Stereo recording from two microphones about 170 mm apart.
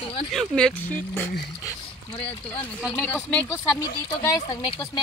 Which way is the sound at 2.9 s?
10° left (ahead or behind).